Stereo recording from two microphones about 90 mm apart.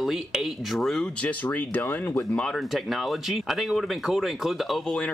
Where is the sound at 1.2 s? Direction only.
20° left (ahead or behind).